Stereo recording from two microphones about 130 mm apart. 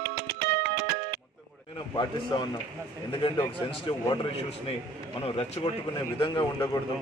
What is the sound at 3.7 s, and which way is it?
Speech, 40° left (ahead or behind).